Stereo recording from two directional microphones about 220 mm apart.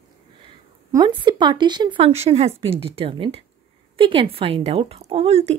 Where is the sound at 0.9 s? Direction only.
20° right (ahead or behind).